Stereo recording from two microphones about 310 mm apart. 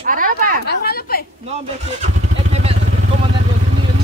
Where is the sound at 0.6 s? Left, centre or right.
Left.